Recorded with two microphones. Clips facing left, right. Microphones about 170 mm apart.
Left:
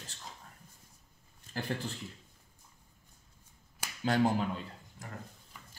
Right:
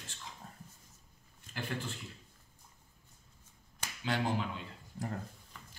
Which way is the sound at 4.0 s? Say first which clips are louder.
Left 5 dB; 40° left (ahead or behind).